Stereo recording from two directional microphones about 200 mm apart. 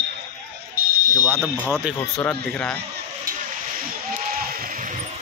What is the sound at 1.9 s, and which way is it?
Speech, 5° left (ahead or behind).